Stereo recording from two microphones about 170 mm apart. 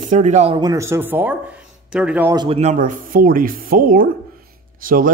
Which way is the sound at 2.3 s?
35° right (ahead or behind).